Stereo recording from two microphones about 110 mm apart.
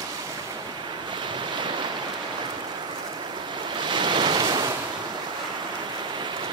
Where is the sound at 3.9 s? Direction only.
45° right (ahead or behind).